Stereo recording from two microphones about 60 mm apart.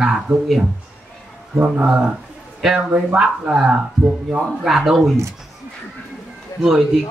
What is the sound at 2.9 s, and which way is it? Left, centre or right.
A man's voice, right.